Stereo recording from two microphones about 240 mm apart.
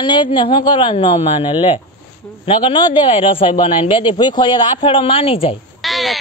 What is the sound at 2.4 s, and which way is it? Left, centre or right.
A man's voice, left.